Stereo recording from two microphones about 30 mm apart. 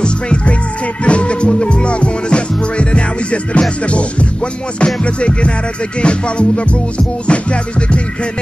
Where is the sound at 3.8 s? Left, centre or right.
Left.